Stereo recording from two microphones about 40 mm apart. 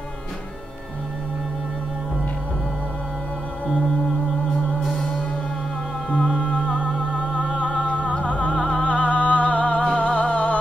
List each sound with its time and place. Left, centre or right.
3.6 s music: left
4.8 s music: centre
6.0 s music: left